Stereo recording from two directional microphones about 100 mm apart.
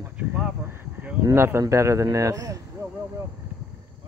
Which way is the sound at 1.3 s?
25° right (ahead or behind).